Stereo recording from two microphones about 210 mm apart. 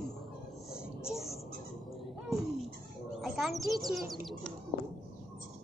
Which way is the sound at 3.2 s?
Centre (ahead or behind).